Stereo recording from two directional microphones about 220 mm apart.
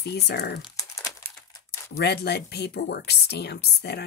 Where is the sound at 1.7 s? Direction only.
50° left (ahead or behind).